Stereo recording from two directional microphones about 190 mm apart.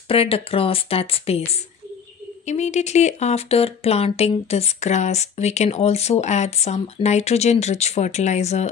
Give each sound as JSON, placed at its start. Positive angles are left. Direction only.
{"t": 0.1, "sound": "speech", "side_deg": 30}